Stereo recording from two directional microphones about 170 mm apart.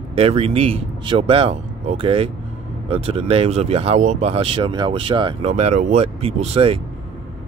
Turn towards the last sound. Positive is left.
turn(degrees=-35)  # may be behind; listen again after turning